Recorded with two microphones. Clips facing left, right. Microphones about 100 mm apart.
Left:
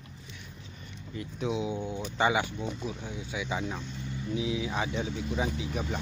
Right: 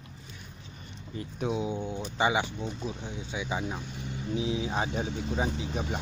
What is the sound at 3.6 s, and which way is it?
Speech, 10° right (ahead or behind).